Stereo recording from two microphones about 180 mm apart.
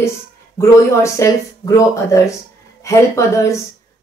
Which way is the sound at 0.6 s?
15° left (ahead or behind).